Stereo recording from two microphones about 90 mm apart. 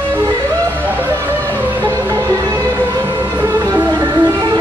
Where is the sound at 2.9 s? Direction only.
45° right (ahead or behind).